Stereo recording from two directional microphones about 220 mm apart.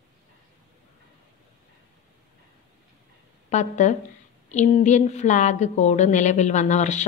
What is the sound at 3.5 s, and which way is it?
A woman's voice, 30° left (ahead or behind).